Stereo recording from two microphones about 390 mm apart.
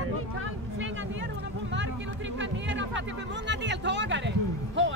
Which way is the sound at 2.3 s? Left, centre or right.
Right.